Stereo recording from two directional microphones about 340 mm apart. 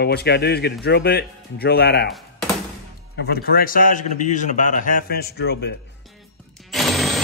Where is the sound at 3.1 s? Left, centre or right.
Left.